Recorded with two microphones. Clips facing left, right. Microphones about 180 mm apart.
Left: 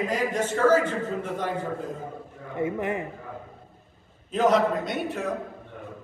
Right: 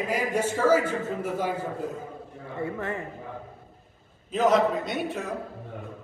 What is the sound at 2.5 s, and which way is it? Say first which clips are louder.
Speech: left 4 dB; 20° left (ahead or behind).